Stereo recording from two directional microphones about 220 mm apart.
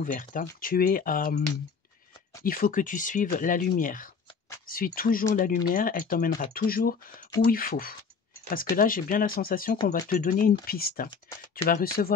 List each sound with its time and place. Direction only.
0.0 s speech: 40° left (ahead or behind)
2.4 s speech: 40° left (ahead or behind)